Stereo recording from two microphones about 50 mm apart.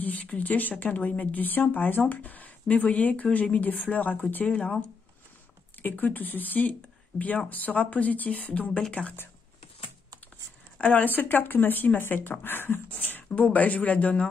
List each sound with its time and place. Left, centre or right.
0.0 s speech: left
5.8 s speech: left
10.8 s speech: left
12.9 s speech: left